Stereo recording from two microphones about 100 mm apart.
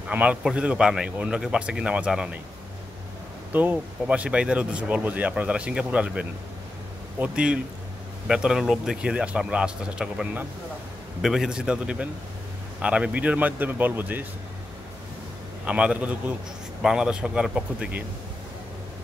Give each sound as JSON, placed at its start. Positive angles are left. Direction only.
{"t": 0.1, "sound": "speech", "side_deg": -15}
{"t": 3.5, "sound": "speech", "side_deg": -15}
{"t": 15.6, "sound": "speech", "side_deg": -10}